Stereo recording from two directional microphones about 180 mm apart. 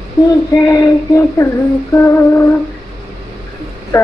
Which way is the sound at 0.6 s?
15° left (ahead or behind).